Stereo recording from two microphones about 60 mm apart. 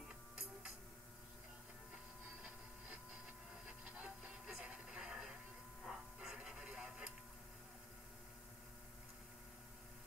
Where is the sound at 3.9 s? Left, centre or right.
Right.